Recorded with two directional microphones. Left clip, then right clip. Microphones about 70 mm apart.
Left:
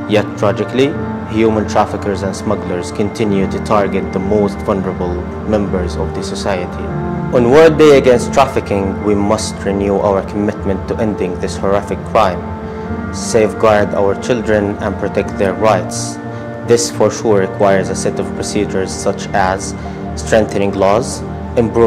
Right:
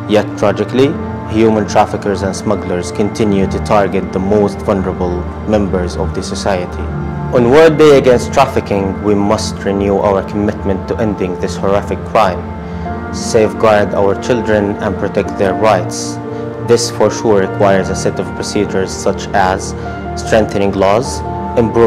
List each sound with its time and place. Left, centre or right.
0.1 s speech: right
7.3 s a man's voice: centre